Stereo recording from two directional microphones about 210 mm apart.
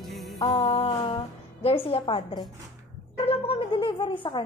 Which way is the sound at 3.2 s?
25° left (ahead or behind).